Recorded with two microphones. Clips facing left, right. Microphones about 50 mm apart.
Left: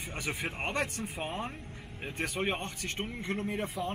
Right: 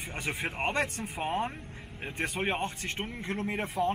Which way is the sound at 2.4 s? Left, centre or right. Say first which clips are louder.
Right 3 dB; right.